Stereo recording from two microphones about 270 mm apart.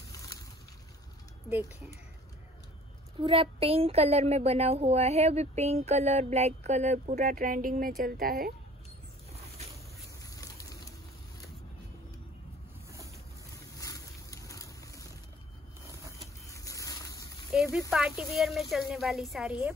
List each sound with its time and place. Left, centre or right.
0.1 s boat: centre
3.2 s a woman's voice: centre
9.3 s boat: right
10.3 s a sound: centre
13.7 s a sound: centre
15.8 s vehicle: centre
16.4 s vehicle: centre
17.5 s a woman's voice: centre